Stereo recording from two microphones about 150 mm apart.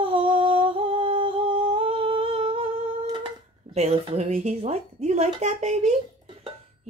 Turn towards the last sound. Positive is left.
turn(degrees=-50)  # may be behind; listen again after turning